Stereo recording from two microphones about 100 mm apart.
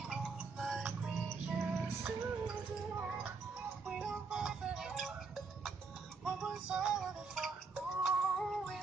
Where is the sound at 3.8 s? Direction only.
5° right (ahead or behind).